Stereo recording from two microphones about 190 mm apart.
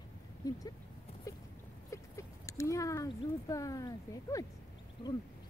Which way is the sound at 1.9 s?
15° left (ahead or behind).